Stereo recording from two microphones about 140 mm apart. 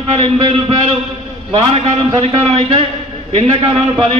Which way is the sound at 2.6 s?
45° right (ahead or behind).